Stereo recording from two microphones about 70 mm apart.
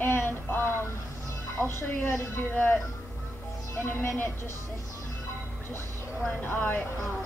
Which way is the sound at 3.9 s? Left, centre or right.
Left.